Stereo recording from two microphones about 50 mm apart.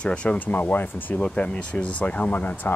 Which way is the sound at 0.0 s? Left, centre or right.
Left.